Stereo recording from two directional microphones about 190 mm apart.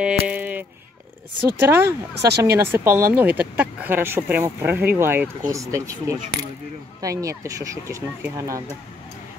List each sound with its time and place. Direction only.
0.0 s a sound: 5° right (ahead or behind)
1.6 s speech: 15° right (ahead or behind)
2.2 s speech: 60° right (ahead or behind)
2.5 s speech: 15° right (ahead or behind)